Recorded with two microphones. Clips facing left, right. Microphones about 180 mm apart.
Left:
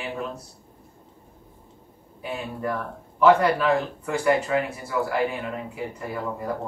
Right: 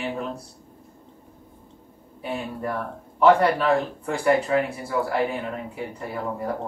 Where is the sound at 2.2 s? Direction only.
35° right (ahead or behind).